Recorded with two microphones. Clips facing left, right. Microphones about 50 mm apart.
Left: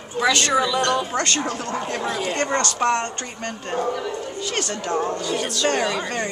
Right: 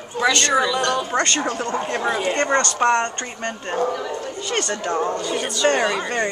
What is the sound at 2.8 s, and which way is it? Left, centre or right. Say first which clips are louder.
Speech: right 2 dB; right.